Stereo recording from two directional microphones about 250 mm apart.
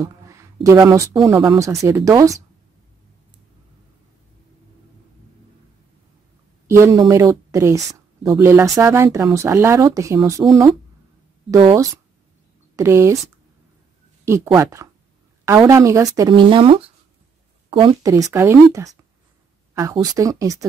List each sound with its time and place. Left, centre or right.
0.0 s a woman's voice: centre
6.7 s a woman's voice: centre
11.5 s a woman's voice: centre
14.2 s a woman's voice: centre